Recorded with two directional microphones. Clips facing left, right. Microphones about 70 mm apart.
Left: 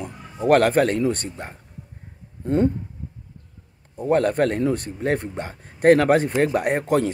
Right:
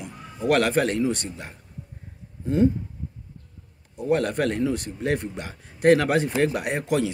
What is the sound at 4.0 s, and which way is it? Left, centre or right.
Speech, left.